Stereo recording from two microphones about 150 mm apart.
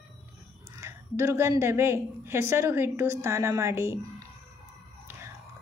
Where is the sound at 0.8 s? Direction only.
20° right (ahead or behind).